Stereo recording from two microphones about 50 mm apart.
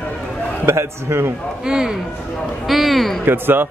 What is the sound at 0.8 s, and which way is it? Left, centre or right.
Speech, right.